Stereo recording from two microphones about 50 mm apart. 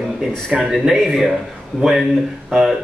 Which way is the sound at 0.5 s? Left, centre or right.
Centre.